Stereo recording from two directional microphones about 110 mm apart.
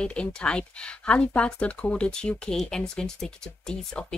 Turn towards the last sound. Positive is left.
turn(degrees=5)  # may be behind; listen again after turning